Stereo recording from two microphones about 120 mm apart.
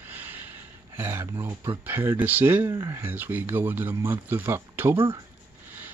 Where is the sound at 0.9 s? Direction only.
20° right (ahead or behind).